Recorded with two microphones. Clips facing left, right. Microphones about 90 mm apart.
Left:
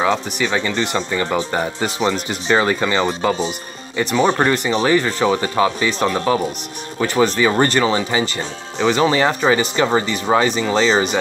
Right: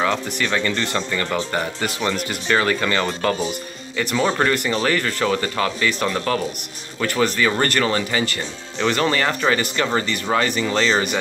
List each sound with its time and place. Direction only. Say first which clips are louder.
0.0 s speech: left 3 dB; 15° left (ahead or behind)